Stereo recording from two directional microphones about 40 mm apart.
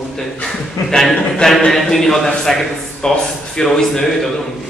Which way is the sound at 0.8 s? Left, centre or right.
Centre.